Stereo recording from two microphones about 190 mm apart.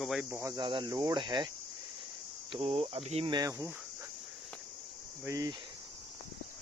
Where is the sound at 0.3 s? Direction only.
15° right (ahead or behind).